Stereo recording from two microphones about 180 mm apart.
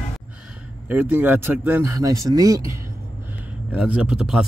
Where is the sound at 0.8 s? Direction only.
10° right (ahead or behind).